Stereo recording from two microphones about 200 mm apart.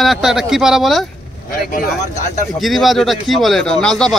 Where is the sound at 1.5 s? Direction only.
45° left (ahead or behind).